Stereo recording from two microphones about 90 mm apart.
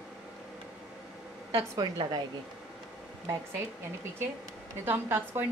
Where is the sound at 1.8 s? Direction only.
50° right (ahead or behind).